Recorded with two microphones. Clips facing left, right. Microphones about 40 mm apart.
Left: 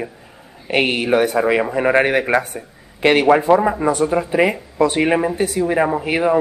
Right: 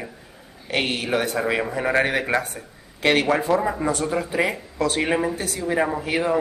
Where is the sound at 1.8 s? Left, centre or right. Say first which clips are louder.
Left 5 dB; left.